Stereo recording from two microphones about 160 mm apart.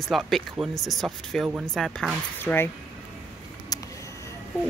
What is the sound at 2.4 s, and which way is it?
Speech, 15° left (ahead or behind).